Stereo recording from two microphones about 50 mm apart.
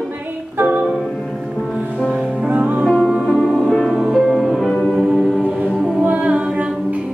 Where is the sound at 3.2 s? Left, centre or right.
Centre.